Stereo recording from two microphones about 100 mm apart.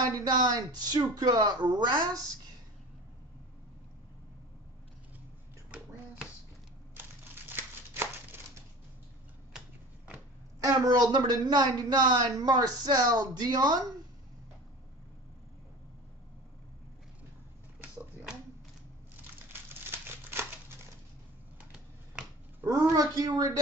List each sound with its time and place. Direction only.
0.1 s speech: 40° right (ahead or behind)
7.0 s crumpling: 20° right (ahead or behind)
9.5 s a sound: 5° right (ahead or behind)
10.6 s speech: 35° right (ahead or behind)
17.7 s a sound: 10° right (ahead or behind)
19.9 s crumpling: 20° right (ahead or behind)
22.9 s speech: 40° right (ahead or behind)